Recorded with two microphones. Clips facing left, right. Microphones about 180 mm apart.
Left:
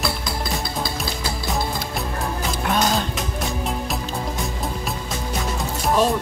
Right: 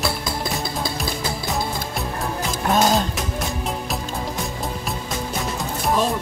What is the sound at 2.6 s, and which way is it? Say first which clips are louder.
Music: right 3 dB; 45° right (ahead or behind).